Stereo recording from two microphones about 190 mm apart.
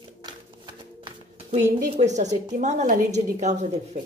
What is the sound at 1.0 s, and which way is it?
A woman's voice, 35° right (ahead or behind).